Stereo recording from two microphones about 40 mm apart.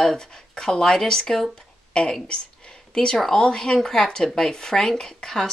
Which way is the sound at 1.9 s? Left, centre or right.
Left.